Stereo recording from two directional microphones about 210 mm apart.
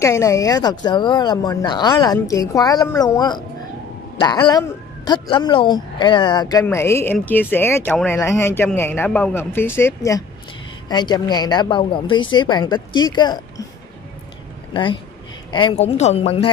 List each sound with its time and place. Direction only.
0.0 s speech: 15° left (ahead or behind)
14.7 s speech: 25° left (ahead or behind)